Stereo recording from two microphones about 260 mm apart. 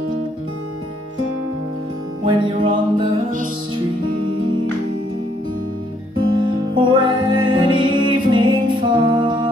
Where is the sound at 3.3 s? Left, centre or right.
Right.